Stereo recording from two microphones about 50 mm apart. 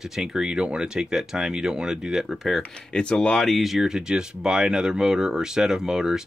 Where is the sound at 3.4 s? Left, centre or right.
Centre.